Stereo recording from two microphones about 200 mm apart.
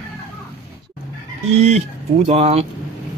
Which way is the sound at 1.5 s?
35° right (ahead or behind).